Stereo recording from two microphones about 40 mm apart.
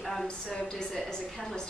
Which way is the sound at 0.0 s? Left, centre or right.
Centre.